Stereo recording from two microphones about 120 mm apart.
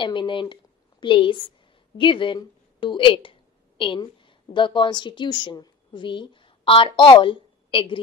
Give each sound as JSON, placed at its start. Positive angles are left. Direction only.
{"t": 0.0, "sound": "a woman's voice", "side_deg": 45}